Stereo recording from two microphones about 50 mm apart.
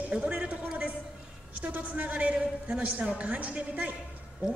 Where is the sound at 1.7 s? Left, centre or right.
Right.